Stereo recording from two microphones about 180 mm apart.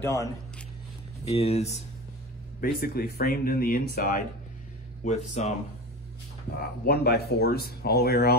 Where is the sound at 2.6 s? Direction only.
55° left (ahead or behind).